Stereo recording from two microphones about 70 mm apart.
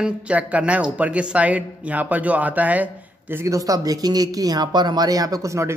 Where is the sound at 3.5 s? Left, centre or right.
Right.